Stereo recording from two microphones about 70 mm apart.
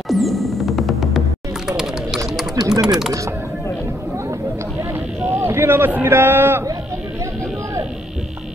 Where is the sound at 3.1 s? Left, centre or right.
Right.